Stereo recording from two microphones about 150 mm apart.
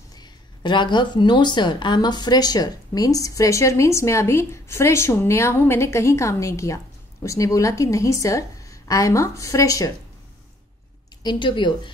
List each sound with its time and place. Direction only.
0.1 s a woman's voice: 30° left (ahead or behind)
11.2 s speech: 30° left (ahead or behind)